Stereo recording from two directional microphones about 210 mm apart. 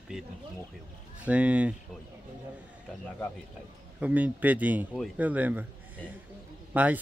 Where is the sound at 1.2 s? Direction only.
5° right (ahead or behind).